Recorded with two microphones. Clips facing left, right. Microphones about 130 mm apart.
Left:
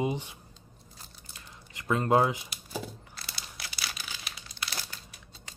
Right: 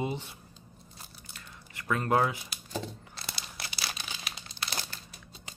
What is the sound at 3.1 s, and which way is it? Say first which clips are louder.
Crumpling: right 2 dB; 25° right (ahead or behind).